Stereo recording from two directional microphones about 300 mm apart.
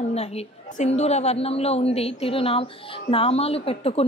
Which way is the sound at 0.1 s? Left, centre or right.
Left.